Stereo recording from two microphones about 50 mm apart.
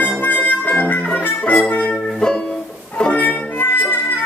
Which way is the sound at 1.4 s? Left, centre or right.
Left.